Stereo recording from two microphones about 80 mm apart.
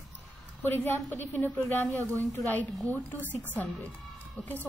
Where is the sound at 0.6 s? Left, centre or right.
Left.